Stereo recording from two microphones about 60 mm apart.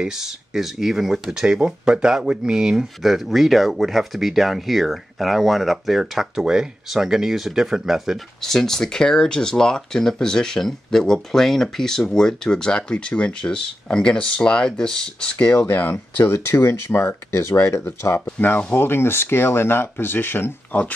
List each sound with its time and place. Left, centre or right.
0.0 s speech: centre
8.4 s speech: centre
15.3 s speech: left
17.6 s speech: left